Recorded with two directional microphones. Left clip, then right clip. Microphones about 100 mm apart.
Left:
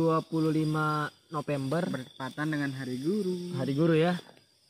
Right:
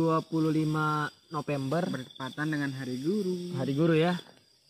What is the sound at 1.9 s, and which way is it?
Speech, 35° left (ahead or behind).